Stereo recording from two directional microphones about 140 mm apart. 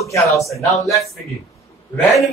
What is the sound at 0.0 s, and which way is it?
Speech, 20° left (ahead or behind).